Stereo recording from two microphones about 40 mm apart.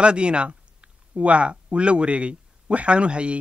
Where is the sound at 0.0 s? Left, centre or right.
Right.